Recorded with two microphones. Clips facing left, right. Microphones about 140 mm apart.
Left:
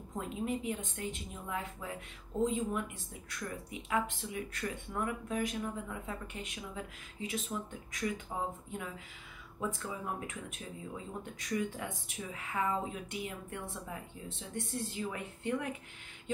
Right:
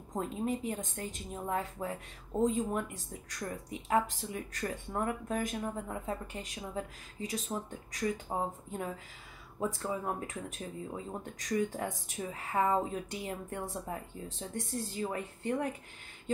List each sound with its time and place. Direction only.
0.1 s speech: 40° right (ahead or behind)
11.3 s speech: 40° right (ahead or behind)